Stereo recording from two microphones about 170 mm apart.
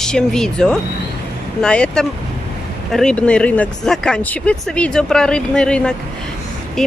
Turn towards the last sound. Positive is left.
turn(degrees=5)  # may be behind; listen again after turning